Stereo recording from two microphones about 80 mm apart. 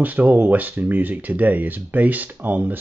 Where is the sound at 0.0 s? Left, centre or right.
Right.